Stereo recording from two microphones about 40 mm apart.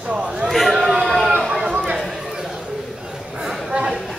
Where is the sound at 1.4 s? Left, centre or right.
Centre.